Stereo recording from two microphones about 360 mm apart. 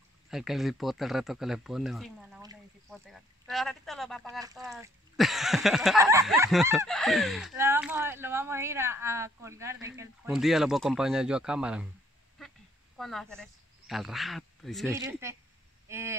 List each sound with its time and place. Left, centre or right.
0.3 s speech: centre
4.4 s speech: centre